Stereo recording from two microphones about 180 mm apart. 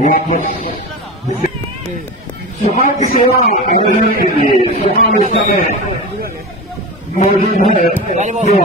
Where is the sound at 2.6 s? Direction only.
45° left (ahead or behind).